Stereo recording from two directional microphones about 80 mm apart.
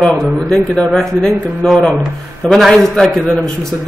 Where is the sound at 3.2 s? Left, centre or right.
Centre.